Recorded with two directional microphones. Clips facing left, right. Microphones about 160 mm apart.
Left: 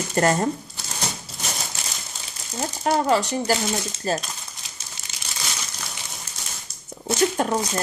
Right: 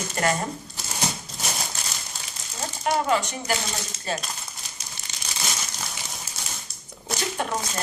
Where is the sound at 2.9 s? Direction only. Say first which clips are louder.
Left 3 dB; 35° left (ahead or behind).